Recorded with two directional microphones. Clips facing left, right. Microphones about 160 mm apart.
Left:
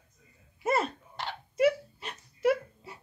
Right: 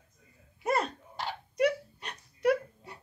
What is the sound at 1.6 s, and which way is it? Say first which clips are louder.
Wail: left 3 dB; 5° left (ahead or behind).